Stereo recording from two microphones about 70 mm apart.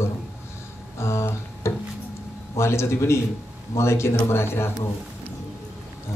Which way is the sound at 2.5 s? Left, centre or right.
Left.